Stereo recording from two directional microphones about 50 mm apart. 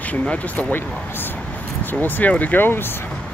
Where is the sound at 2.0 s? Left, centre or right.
Left.